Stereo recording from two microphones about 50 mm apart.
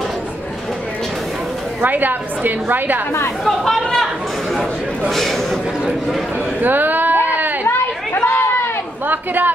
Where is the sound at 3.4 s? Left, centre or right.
Centre.